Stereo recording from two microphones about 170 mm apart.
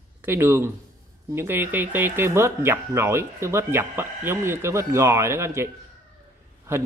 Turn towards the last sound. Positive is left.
turn(degrees=-15)  # may be behind; listen again after turning